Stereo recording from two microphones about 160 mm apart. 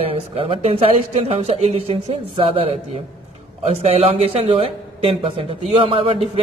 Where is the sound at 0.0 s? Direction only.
35° right (ahead or behind).